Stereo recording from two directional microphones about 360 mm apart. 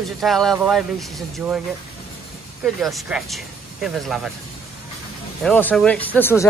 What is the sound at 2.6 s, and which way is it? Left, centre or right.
Speech, centre.